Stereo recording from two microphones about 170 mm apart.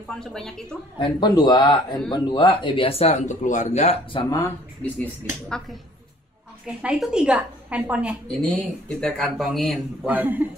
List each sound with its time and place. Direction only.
0.1 s speech: 5° left (ahead or behind)
0.9 s speech: 30° left (ahead or behind)
6.8 s a woman's voice: 5° right (ahead or behind)
8.3 s speech: 5° left (ahead or behind)